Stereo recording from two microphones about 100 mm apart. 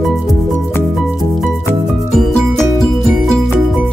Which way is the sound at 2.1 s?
5° left (ahead or behind).